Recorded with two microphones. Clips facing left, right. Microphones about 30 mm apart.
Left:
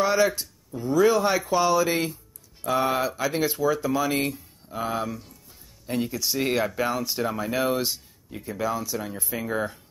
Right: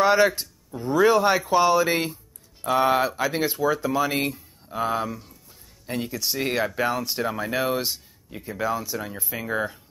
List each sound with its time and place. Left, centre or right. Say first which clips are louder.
0.0 s speech: right 3 dB; right; by 9.8 s centre